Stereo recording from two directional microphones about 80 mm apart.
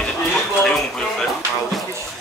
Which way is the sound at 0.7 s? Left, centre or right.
Centre.